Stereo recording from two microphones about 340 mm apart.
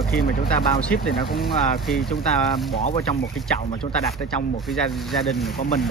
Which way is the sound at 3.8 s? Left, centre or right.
Centre.